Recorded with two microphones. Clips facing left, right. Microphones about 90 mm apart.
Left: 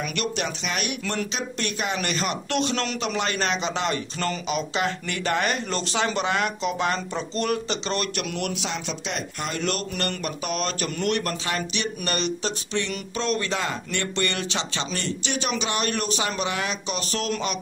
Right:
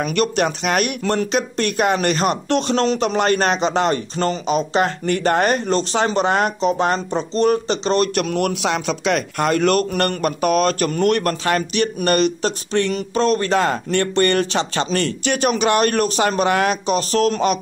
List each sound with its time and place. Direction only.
0.0 s speech: 45° right (ahead or behind)
8.6 s speech: 65° right (ahead or behind); by 17.6 s 45° right (ahead or behind)